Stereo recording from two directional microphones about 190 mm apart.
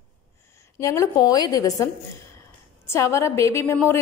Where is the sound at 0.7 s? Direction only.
15° left (ahead or behind).